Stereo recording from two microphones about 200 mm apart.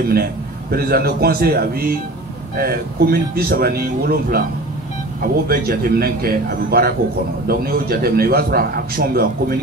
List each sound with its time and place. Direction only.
0.1 s a man's voice: 50° right (ahead or behind)